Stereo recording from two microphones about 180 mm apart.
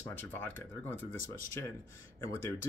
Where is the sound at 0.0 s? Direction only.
10° left (ahead or behind).